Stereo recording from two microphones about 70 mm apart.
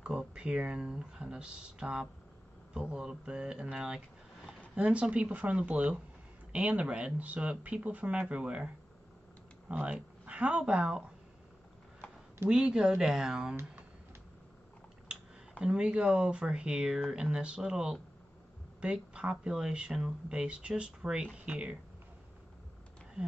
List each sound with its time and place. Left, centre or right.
0.0 s speech: centre
9.7 s speech: centre
12.0 s a sound: centre
12.4 s speech: centre
15.6 s speech: centre